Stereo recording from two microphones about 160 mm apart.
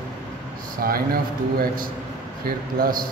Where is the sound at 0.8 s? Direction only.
70° right (ahead or behind).